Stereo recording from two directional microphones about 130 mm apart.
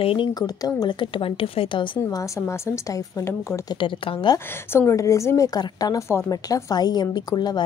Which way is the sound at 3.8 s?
40° left (ahead or behind).